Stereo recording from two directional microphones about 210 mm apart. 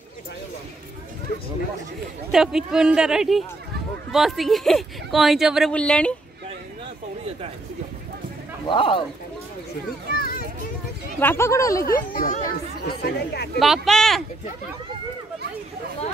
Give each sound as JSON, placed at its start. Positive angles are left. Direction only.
{"t": 2.3, "sound": "speech", "side_deg": 0}
{"t": 8.6, "sound": "speech", "side_deg": 25}
{"t": 10.1, "sound": "children playing", "side_deg": 45}
{"t": 11.1, "sound": "speech", "side_deg": 10}
{"t": 11.8, "sound": "speech", "side_deg": 45}
{"t": 13.6, "sound": "speech", "side_deg": 0}